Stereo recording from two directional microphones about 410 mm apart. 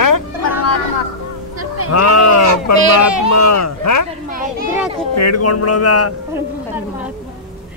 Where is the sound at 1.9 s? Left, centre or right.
Left.